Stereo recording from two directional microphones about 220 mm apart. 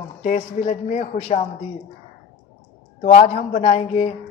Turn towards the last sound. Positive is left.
turn(degrees=30)  # may be behind; listen again after turning